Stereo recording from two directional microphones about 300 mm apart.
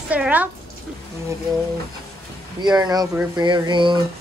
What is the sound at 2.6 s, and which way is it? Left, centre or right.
Speech, centre.